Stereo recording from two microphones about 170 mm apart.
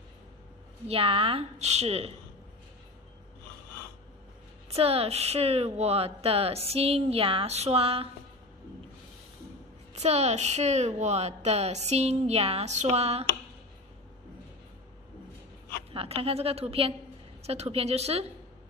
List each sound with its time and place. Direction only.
0.8 s a woman's voice: 35° right (ahead or behind)
4.6 s a woman's voice: 35° right (ahead or behind)
9.9 s a woman's voice: 40° right (ahead or behind)
15.9 s a woman's voice: 35° right (ahead or behind)